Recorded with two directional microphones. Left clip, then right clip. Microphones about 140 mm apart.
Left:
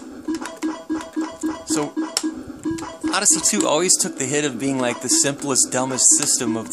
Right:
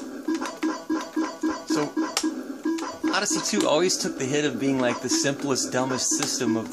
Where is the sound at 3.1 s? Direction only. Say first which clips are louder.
Left 6 dB; 45° left (ahead or behind).